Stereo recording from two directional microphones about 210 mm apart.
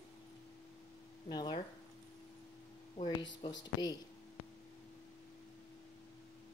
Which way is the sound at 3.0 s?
20° left (ahead or behind).